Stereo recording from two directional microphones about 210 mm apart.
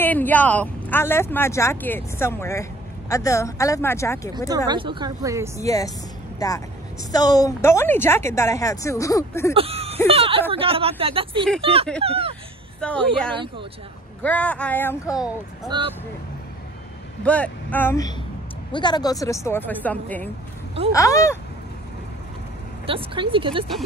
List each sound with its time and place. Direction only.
0.0 s speech: 10° left (ahead or behind)
4.5 s speech: 20° right (ahead or behind)
5.6 s speech: 15° left (ahead or behind)
9.5 s a sound: 25° right (ahead or behind)
10.0 s speech: 25° right (ahead or behind)
12.8 s speech: 5° left (ahead or behind)
13.3 s speech: 25° right (ahead or behind)
14.2 s speech: 5° left (ahead or behind)
15.7 s speech: 20° right (ahead or behind)
17.2 s speech: 5° left (ahead or behind)
22.8 s speech: 25° right (ahead or behind)